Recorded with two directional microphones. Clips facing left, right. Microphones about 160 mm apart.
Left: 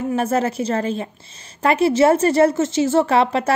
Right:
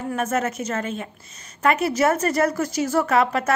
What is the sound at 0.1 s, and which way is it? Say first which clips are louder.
A woman's voice: left 3 dB; 30° left (ahead or behind).